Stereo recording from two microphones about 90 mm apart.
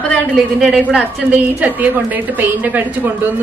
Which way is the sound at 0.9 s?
15° right (ahead or behind).